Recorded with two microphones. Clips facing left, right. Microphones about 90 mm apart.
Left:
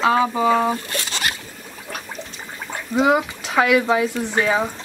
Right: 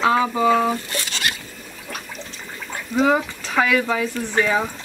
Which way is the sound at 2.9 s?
15° left (ahead or behind).